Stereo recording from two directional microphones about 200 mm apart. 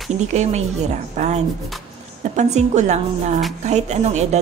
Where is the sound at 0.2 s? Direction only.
35° right (ahead or behind).